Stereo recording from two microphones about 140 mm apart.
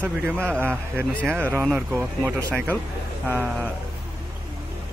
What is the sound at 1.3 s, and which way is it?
Speech, 15° right (ahead or behind).